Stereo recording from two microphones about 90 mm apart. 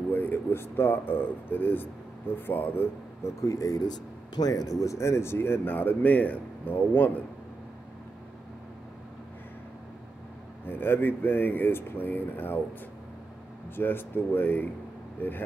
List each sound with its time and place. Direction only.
0.1 s speech: 25° left (ahead or behind)
3.4 s speech: 40° left (ahead or behind); by 7.1 s 20° left (ahead or behind)
10.6 s speech: 20° left (ahead or behind)
13.7 s speech: 25° left (ahead or behind)